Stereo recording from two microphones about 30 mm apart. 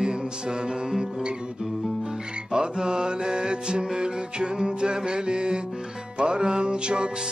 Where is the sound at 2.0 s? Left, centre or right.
Right.